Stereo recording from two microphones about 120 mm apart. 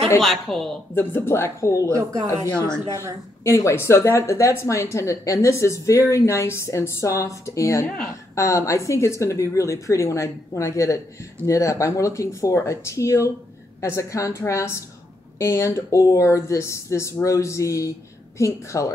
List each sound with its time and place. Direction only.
0.2 s a woman's voice: centre (ahead or behind)
0.9 s speech: 20° left (ahead or behind)
1.9 s speech: 25° right (ahead or behind)
3.4 s speech: 25° left (ahead or behind)